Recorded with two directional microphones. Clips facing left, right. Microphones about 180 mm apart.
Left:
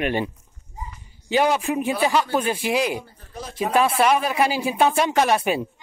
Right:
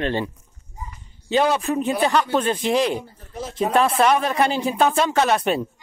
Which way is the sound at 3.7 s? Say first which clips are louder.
Even; 5° left (ahead or behind).